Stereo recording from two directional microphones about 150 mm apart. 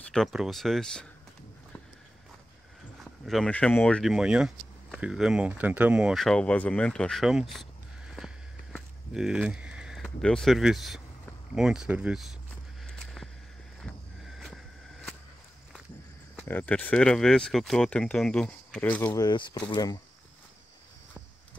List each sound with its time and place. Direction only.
0.1 s speech: centre (ahead or behind)
3.0 s speech: centre (ahead or behind)
8.7 s a sound: 5° right (ahead or behind)
11.5 s speech: 5° right (ahead or behind)
12.8 s a sound: centre (ahead or behind)
16.3 s speech: 10° left (ahead or behind)
19.2 s speech: 30° left (ahead or behind)